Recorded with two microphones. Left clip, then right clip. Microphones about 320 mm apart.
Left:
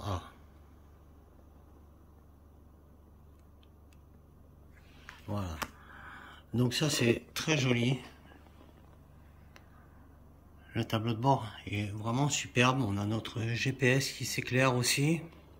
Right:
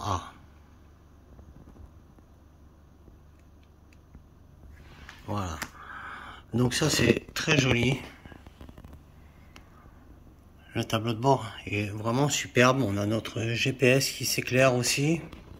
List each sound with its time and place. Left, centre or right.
0.0 s throat clearing: centre
5.2 s speech: centre
10.7 s speech: centre